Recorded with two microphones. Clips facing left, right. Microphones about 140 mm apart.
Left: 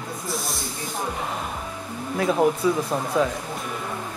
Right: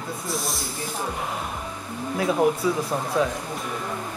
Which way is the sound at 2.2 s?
Centre (ahead or behind).